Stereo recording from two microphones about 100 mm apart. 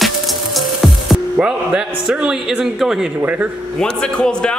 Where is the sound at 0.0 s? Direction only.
Centre (ahead or behind).